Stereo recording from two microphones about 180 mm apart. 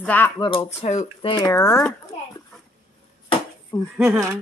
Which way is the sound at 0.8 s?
40° left (ahead or behind).